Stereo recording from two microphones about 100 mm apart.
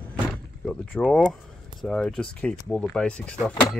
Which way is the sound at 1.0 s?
5° left (ahead or behind).